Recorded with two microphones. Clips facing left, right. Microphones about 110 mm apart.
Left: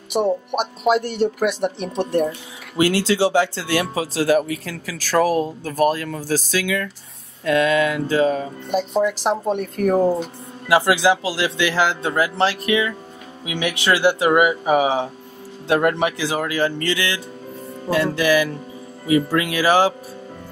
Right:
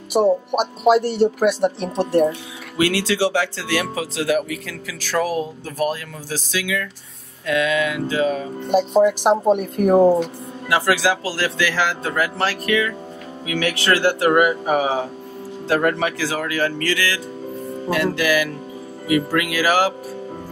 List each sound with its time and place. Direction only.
0.1 s speech: 5° right (ahead or behind)
2.8 s speech: 30° left (ahead or behind)
8.7 s a woman's voice: 5° right (ahead or behind)
10.7 s speech: 25° left (ahead or behind)